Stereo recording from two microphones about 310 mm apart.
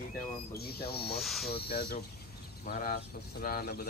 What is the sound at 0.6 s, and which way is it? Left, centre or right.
Speech, left.